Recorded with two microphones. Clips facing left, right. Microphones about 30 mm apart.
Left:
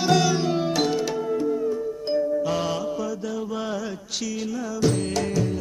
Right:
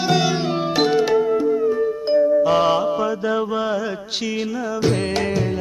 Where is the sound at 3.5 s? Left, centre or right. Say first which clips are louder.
Right 7 dB; right.